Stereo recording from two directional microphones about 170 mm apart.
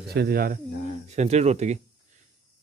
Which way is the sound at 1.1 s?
40° right (ahead or behind).